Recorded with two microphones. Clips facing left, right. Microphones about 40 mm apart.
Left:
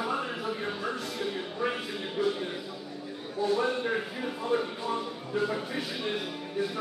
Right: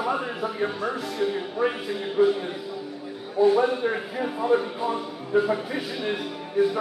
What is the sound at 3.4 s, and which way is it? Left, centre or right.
Speech, centre.